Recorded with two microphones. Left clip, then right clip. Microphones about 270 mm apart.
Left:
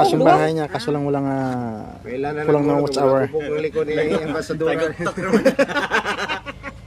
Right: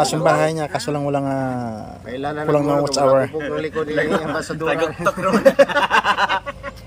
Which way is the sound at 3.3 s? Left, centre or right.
Centre.